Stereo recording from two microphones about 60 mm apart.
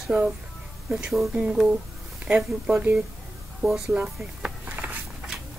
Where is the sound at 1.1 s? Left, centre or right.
Centre.